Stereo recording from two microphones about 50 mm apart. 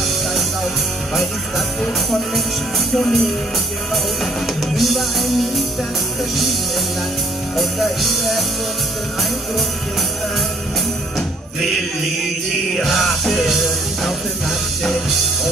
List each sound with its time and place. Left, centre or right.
2.9 s music: centre
4.7 s music: centre
7.5 s music: centre
12.7 s music: centre
14.8 s music: centre